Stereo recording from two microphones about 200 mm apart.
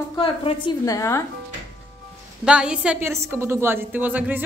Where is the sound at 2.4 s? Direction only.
5° right (ahead or behind).